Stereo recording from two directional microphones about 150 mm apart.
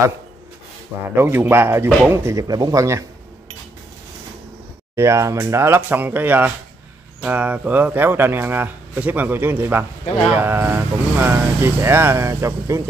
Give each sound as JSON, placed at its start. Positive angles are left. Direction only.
{"t": 1.0, "sound": "speech", "side_deg": -15}
{"t": 4.9, "sound": "speech", "side_deg": -20}